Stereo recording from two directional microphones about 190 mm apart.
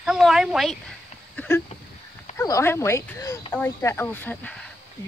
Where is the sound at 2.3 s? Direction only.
15° left (ahead or behind).